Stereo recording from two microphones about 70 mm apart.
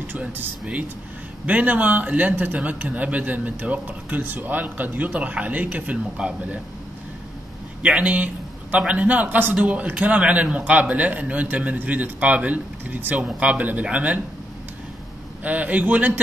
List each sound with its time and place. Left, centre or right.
0.0 s a man's voice: right
7.8 s a man's voice: centre
15.4 s a man's voice: right